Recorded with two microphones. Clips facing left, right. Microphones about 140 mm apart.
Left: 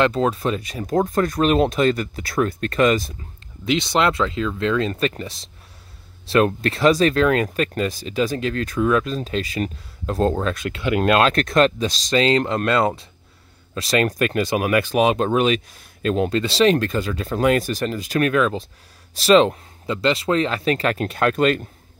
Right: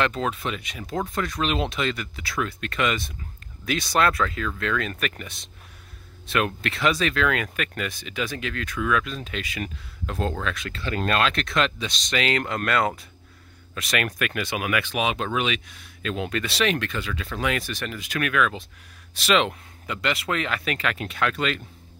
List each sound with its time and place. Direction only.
0.0 s speech: 35° left (ahead or behind)
3.6 s speech: 25° left (ahead or behind); by 11.9 s 40° left (ahead or behind)
12.1 s speech: 30° left (ahead or behind)
16.3 s speech: 30° left (ahead or behind); by 21.6 s 45° left (ahead or behind)